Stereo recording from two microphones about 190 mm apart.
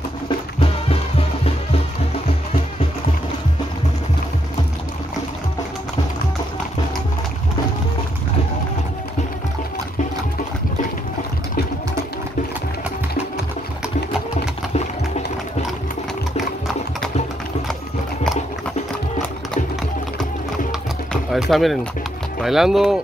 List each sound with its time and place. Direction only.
0.6 s music: 30° left (ahead or behind)
21.1 s music: centre (ahead or behind)
22.4 s speech: centre (ahead or behind)